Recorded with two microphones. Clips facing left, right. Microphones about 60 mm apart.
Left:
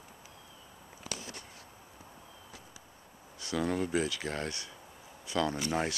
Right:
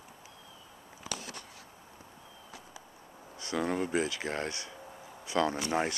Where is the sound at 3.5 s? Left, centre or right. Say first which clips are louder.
Even; centre.